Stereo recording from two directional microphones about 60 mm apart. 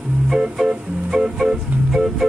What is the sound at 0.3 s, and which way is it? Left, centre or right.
Music, centre.